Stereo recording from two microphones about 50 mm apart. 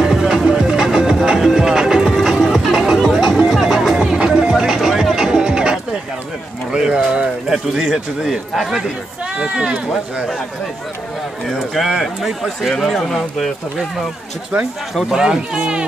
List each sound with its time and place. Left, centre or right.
0.0 s music: centre
4.2 s music: centre
6.7 s a sound: centre
9.4 s speech: centre
11.4 s speech: centre
15.1 s speech: centre